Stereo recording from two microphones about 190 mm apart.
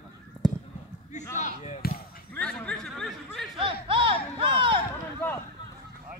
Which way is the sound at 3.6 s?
25° right (ahead or behind).